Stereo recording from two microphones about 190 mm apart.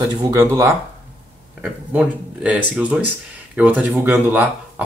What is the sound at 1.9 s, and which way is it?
Speech, 5° right (ahead or behind).